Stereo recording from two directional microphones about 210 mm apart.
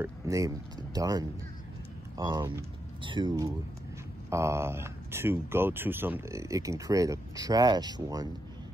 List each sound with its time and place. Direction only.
0.0 s speech: 15° right (ahead or behind)